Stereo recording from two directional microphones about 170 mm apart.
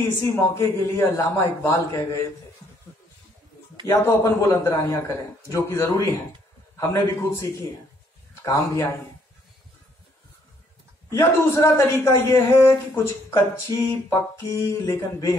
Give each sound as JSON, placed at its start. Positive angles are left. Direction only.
{"t": 0.6, "sound": "a man's voice", "side_deg": 15}
{"t": 3.8, "sound": "a man's voice", "side_deg": 15}
{"t": 8.5, "sound": "a man's voice", "side_deg": 20}
{"t": 11.1, "sound": "a man's voice", "side_deg": 15}